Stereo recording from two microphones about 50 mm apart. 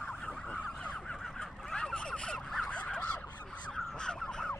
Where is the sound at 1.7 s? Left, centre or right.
Centre.